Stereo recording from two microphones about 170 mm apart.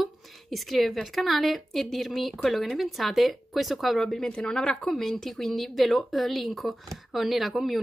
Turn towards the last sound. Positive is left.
turn(degrees=0)  # may be behind; listen again after turning